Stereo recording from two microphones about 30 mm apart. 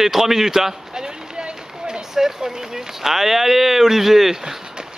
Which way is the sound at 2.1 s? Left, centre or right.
Centre.